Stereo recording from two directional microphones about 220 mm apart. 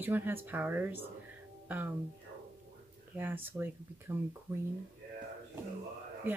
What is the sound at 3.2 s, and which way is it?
Speech, 10° right (ahead or behind).